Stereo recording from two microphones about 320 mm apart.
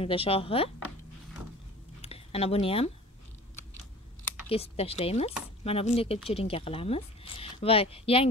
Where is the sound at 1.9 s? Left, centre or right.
Centre.